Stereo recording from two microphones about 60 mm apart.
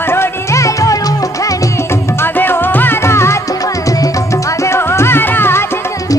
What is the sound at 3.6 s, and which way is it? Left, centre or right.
Music, left.